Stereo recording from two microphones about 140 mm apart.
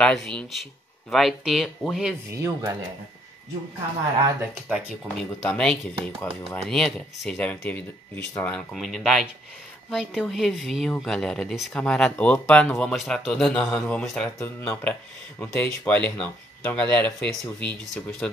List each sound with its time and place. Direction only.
0.0 s speech: 5° left (ahead or behind)
2.3 s speech: 20° right (ahead or behind)
4.4 s speech: 10° right (ahead or behind)
5.0 s speech: 5° left (ahead or behind)